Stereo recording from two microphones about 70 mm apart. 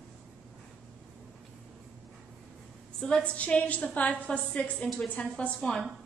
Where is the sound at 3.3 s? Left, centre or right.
Centre.